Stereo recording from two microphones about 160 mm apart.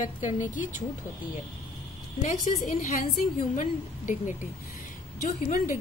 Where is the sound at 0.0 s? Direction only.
55° left (ahead or behind).